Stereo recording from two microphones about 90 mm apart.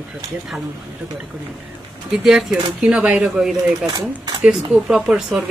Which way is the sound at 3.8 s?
50° right (ahead or behind).